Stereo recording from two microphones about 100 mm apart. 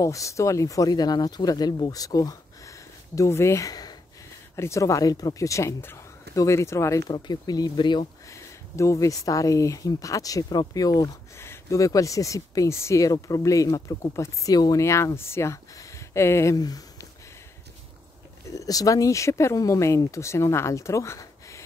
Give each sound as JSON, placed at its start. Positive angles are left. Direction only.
{"t": 0.0, "sound": "speech", "side_deg": 30}
{"t": 7.0, "sound": "speech", "side_deg": 45}
{"t": 8.3, "sound": "speech", "side_deg": 30}
{"t": 16.5, "sound": "a sound", "side_deg": 40}
{"t": 18.5, "sound": "speech", "side_deg": 35}